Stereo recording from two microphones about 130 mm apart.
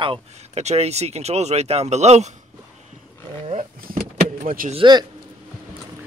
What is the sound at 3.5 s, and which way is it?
Speech, 65° right (ahead or behind).